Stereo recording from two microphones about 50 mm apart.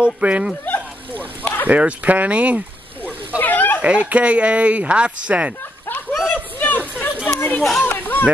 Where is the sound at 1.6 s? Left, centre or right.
Right.